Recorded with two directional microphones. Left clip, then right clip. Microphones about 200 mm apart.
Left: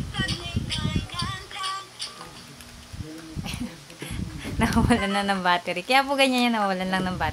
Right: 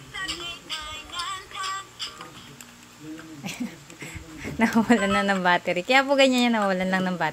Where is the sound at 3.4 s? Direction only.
20° right (ahead or behind).